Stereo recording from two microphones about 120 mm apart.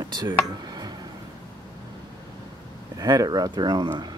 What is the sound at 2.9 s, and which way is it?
Speech, 30° right (ahead or behind).